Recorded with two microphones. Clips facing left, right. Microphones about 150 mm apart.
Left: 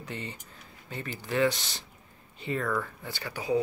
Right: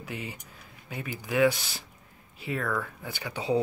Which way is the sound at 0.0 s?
10° right (ahead or behind).